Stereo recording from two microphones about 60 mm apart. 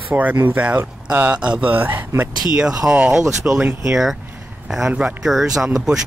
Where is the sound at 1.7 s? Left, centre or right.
Right.